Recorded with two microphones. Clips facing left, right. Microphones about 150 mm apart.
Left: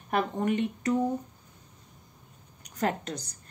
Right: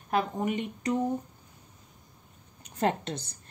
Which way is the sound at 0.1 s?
10° right (ahead or behind).